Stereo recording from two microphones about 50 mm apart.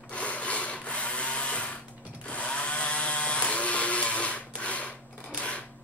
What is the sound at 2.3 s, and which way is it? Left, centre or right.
Chainsaw, left.